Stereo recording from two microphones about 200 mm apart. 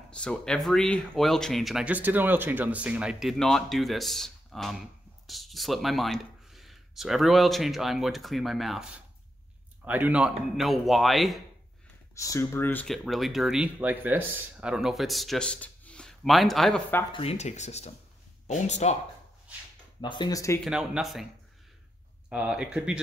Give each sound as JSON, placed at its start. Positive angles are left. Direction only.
{"t": 0.1, "sound": "speech", "side_deg": 5}
{"t": 12.2, "sound": "speech", "side_deg": 15}
{"t": 17.1, "sound": "speech", "side_deg": 30}
{"t": 20.0, "sound": "speech", "side_deg": 20}
{"t": 20.6, "sound": "speech", "side_deg": 0}
{"t": 22.3, "sound": "speech", "side_deg": -5}